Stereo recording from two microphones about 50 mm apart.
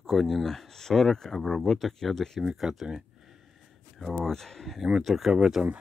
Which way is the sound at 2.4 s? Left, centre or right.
Centre.